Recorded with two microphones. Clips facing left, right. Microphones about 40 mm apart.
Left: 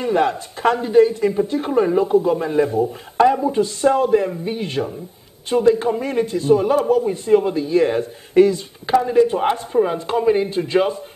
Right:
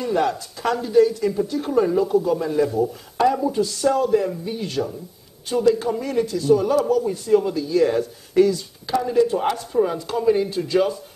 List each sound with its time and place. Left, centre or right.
0.0 s a man's voice: left